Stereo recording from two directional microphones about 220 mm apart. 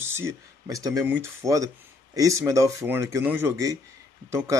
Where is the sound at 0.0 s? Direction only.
10° right (ahead or behind).